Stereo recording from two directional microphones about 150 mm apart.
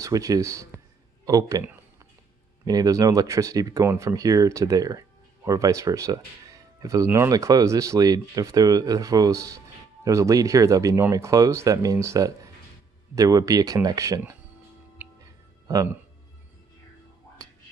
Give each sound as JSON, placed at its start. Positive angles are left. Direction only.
{"t": 0.0, "sound": "speech", "side_deg": -25}
{"t": 2.6, "sound": "speech", "side_deg": -25}
{"t": 15.7, "sound": "speech", "side_deg": -20}